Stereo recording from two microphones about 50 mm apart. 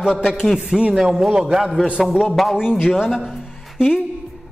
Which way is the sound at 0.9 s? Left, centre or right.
Centre.